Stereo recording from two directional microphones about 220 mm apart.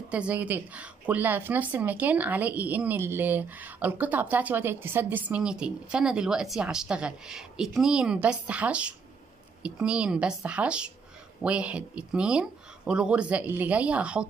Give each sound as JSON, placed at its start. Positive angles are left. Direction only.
{"t": 0.1, "sound": "speech", "side_deg": -5}